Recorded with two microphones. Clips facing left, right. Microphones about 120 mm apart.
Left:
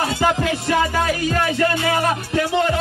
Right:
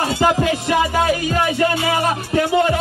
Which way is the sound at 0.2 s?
15° right (ahead or behind).